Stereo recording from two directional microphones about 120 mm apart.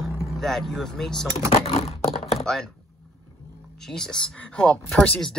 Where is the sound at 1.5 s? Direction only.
60° left (ahead or behind).